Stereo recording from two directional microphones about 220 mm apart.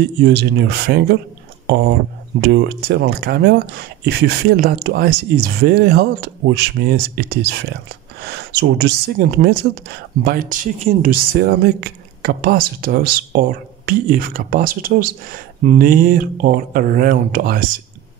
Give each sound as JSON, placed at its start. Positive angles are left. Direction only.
{"t": 0.2, "sound": "speech", "side_deg": -50}
{"t": 2.4, "sound": "speech", "side_deg": -45}